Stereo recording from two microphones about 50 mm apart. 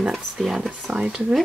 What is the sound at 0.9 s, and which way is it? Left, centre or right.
Speech, right.